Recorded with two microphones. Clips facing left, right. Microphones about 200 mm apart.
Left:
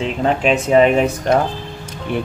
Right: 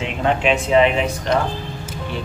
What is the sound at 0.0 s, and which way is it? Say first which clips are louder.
Speech: left 2 dB; 40° left (ahead or behind).